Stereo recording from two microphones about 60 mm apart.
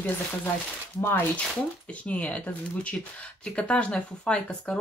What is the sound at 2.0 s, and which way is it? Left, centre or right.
Speech, left.